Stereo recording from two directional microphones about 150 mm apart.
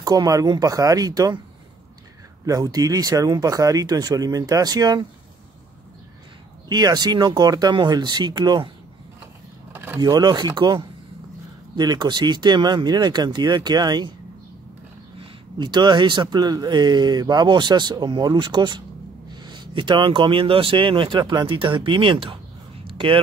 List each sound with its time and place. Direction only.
0.0 s speech: 25° right (ahead or behind)
2.4 s speech: 25° right (ahead or behind)
6.7 s speech: 25° right (ahead or behind)
9.7 s vehicle: 10° right (ahead or behind)
9.9 s speech: 25° right (ahead or behind)
15.5 s speech: 30° right (ahead or behind)
22.8 s a sound: 35° right (ahead or behind)